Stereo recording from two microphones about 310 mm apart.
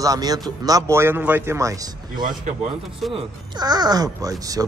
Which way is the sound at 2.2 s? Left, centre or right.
Right.